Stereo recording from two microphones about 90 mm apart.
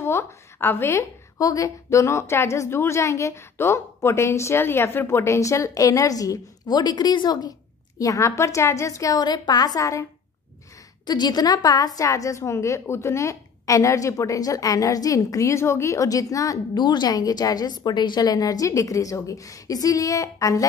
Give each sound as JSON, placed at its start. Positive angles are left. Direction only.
{"t": 0.0, "sound": "a woman's voice", "side_deg": 30}
{"t": 1.4, "sound": "a woman's voice", "side_deg": 40}
{"t": 8.0, "sound": "a woman's voice", "side_deg": 35}
{"t": 11.1, "sound": "a woman's voice", "side_deg": 50}
{"t": 16.7, "sound": "a woman's voice", "side_deg": 55}